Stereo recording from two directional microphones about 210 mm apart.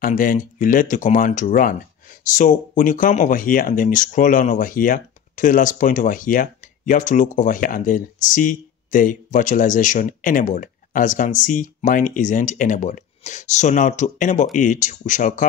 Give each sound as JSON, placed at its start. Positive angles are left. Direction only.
{"t": 0.0, "sound": "speech", "side_deg": 40}